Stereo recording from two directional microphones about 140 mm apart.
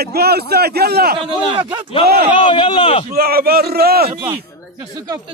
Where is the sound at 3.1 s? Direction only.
90° right.